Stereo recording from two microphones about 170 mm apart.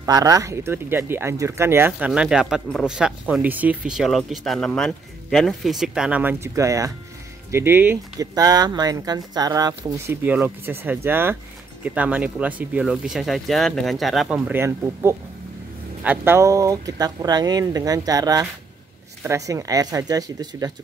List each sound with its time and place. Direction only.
0.0 s speech: 20° right (ahead or behind)